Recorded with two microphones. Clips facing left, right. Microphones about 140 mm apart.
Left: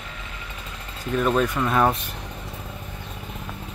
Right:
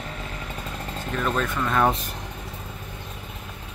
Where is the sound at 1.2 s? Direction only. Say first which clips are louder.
Left 4 dB; 15° left (ahead or behind).